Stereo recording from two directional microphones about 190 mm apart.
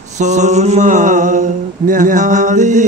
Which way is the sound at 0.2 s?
40° right (ahead or behind).